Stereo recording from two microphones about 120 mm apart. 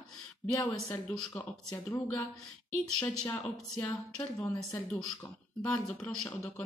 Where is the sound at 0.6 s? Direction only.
25° left (ahead or behind).